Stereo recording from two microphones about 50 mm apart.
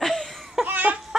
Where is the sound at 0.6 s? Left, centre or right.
Right.